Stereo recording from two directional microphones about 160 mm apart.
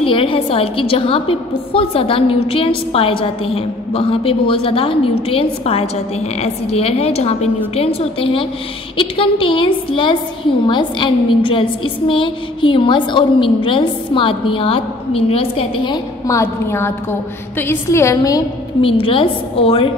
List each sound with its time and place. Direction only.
0.0 s a woman's voice: 35° left (ahead or behind)
16.3 s a woman's voice: 15° left (ahead or behind)
18.8 s a woman's voice: 35° left (ahead or behind)